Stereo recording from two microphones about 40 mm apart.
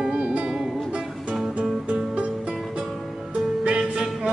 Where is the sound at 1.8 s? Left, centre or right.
Right.